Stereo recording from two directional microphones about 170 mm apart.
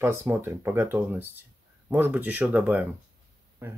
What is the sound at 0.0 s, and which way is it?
Speech, 15° right (ahead or behind).